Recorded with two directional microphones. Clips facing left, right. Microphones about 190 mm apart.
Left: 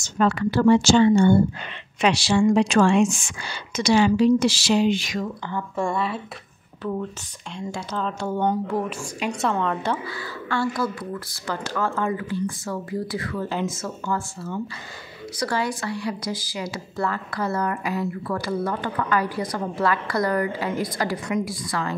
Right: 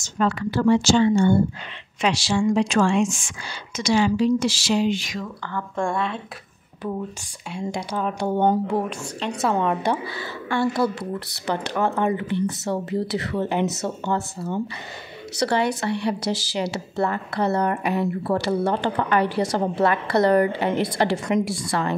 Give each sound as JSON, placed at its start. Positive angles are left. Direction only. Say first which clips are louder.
{"t": 0.0, "sound": "speech", "louder": "left 2 dB", "side_deg": 65}
{"t": 5.8, "sound": "speech", "louder": "even", "side_deg": 5}
{"t": 7.5, "sound": "speech", "louder": "right 2 dB", "side_deg": -10}
{"t": 9.2, "sound": "a woman's voice", "louder": "left 1 dB", "side_deg": 10}
{"t": 9.6, "sound": "speech", "louder": "right 3 dB", "side_deg": -15}
{"t": 16.3, "sound": "a woman's voice", "louder": "right 4 dB", "side_deg": -75}
{"t": 16.7, "sound": "speech", "louder": "right 3 dB", "side_deg": -25}
{"t": 18.4, "sound": "a woman's voice", "louder": "right 3 dB", "side_deg": -70}
{"t": 18.7, "sound": "speech", "louder": "right 3 dB", "side_deg": -25}
{"t": 19.2, "sound": "a woman's voice", "louder": "right 5 dB", "side_deg": -75}
{"t": 19.6, "sound": "speech", "louder": "right 3 dB", "side_deg": -25}